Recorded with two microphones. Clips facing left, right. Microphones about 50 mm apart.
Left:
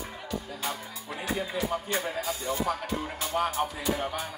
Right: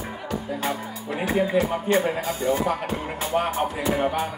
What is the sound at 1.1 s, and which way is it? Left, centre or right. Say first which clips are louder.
A man's voice: right 10 dB; right.